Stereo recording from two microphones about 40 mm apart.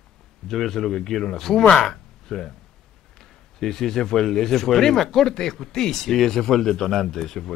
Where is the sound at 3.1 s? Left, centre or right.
Centre.